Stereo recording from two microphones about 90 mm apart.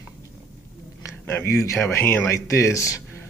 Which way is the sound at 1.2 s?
25° left (ahead or behind).